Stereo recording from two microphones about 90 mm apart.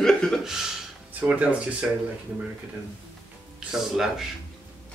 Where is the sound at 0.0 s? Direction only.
5° left (ahead or behind).